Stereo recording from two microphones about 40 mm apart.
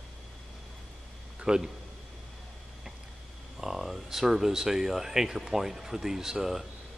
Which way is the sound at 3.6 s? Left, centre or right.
Centre.